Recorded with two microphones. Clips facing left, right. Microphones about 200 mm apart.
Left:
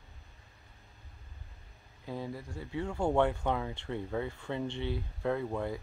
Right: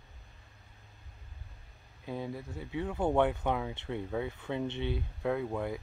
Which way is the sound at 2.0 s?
20° right (ahead or behind).